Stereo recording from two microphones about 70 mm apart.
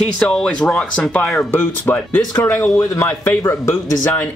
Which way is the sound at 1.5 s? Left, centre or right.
Left.